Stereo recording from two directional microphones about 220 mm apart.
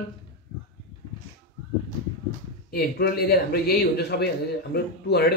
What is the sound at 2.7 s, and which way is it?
Speech, 45° left (ahead or behind).